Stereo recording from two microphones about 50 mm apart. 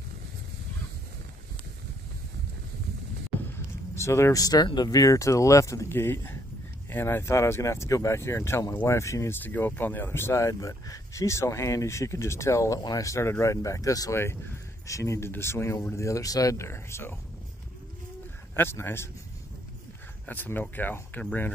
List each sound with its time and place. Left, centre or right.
3.5 s a sound: left
5.1 s speech: left
5.9 s speech: left
9.3 s speech: left
10.3 s speech: left
13.3 s speech: left
15.3 s speech: left
18.6 s speech: left
20.2 s speech: left